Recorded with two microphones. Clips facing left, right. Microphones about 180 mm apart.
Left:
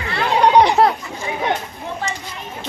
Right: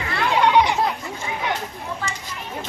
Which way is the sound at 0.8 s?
70° left (ahead or behind).